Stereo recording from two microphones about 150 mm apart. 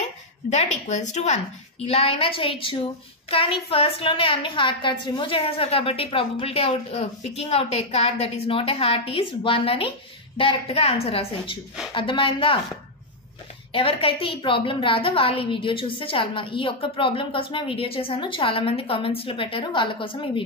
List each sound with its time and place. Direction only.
0.0 s a woman's voice: 50° left (ahead or behind); by 12.5 s 35° left (ahead or behind)
13.7 s a woman's voice: 35° left (ahead or behind)